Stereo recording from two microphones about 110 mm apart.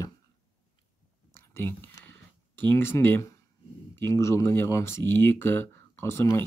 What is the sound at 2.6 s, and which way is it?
Speech, 20° left (ahead or behind).